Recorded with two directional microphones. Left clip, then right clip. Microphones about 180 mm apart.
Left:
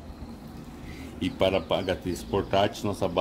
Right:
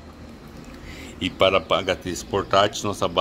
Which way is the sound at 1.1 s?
5° right (ahead or behind).